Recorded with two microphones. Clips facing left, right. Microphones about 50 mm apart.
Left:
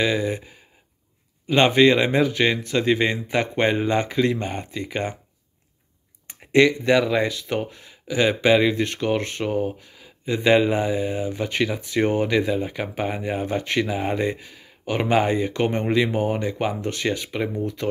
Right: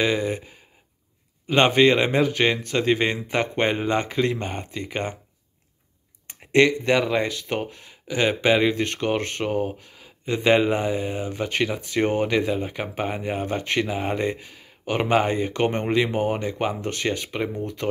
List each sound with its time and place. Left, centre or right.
0.0 s speech: right
1.5 s speech: right
6.5 s speech: right
8.7 s speech: right
13.4 s speech: right
13.8 s speech: right
14.9 s speech: right
16.4 s speech: right